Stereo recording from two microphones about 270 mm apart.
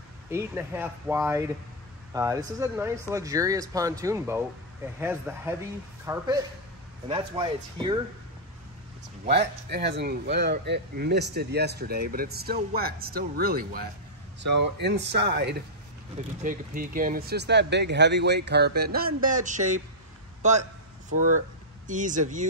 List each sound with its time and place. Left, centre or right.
0.3 s speech: centre
9.2 s speech: right